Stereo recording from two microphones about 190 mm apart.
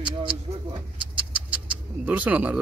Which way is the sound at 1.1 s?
5° right (ahead or behind).